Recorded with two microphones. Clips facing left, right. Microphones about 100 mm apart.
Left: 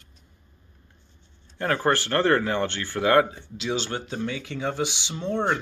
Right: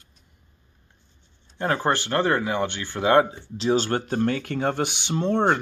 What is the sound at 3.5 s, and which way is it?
Speech, 40° right (ahead or behind).